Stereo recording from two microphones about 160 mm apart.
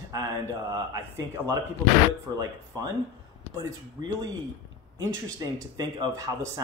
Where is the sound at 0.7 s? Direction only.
20° right (ahead or behind).